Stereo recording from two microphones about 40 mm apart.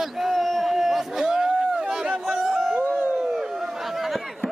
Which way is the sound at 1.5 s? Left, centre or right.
Right.